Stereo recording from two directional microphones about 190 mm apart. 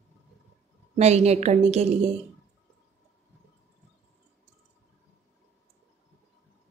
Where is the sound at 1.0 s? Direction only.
35° right (ahead or behind).